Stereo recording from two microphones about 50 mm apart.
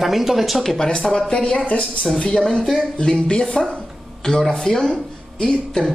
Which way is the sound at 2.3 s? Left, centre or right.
Centre.